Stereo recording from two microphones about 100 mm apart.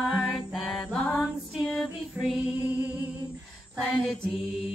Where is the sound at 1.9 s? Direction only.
5° right (ahead or behind).